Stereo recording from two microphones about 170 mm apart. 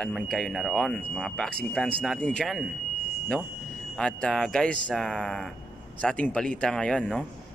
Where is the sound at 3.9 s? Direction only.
5° left (ahead or behind).